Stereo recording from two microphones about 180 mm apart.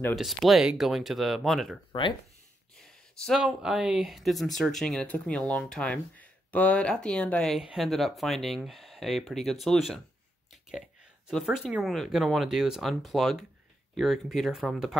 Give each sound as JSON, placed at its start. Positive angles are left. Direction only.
{"t": 0.1, "sound": "speech", "side_deg": 0}
{"t": 1.9, "sound": "speech", "side_deg": 25}
{"t": 2.7, "sound": "speech", "side_deg": 0}
{"t": 11.2, "sound": "speech", "side_deg": 0}